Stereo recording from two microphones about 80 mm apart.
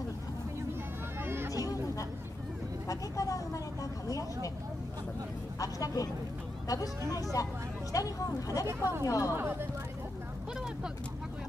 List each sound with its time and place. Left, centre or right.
1.2 s a sound: right
1.5 s a sound: left
2.9 s vehicle: left
5.6 s speech: left
7.4 s speech: left
8.6 s speech: right
9.0 s speech: left
9.3 s speech: right